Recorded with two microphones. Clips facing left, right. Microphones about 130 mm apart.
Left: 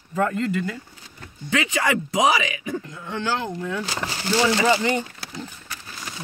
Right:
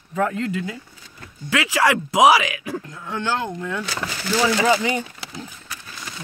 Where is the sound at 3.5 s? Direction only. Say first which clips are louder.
Even; 65° right (ahead or behind).